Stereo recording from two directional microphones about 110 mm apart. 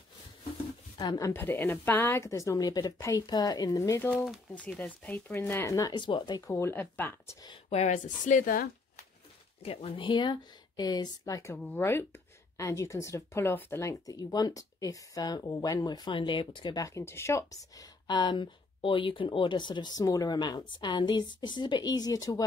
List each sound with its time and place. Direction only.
0.9 s speech: 35° left (ahead or behind)
1.3 s a woman's voice: 20° left (ahead or behind)
4.1 s speech: 5° left (ahead or behind)
4.7 s a woman's voice: 15° left (ahead or behind); by 5.9 s 30° left (ahead or behind)
5.9 s speech: 45° left (ahead or behind)
6.4 s a woman's voice: 25° left (ahead or behind)
7.7 s speech: 80° left
9.6 s speech: 65° left (ahead or behind)
10.0 s speech: 45° left (ahead or behind)
11.7 s speech: 20° left (ahead or behind); by 16.8 s 45° left (ahead or behind)
16.8 s speech: 25° left (ahead or behind)